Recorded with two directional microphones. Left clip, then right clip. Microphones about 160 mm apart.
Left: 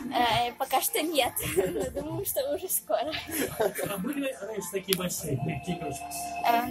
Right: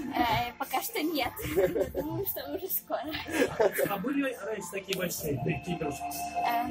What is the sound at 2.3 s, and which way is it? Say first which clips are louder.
Speech: left 7 dB; 60° left (ahead or behind).